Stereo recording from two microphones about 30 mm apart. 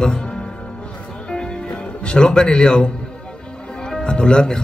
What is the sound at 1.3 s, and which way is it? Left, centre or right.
Music, left.